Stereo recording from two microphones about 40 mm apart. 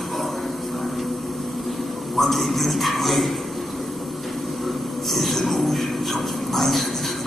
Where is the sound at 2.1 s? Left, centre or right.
Centre.